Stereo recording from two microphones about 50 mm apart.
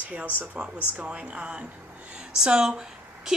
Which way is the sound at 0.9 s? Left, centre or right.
Right.